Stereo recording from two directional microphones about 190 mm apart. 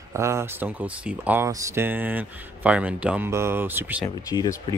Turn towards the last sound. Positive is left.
turn(degrees=20)  # may be behind; listen again after turning